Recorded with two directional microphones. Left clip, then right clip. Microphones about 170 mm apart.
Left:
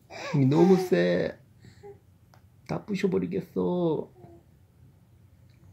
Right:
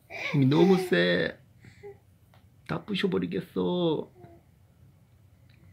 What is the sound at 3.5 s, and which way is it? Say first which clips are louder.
Speech: even; 20° right (ahead or behind).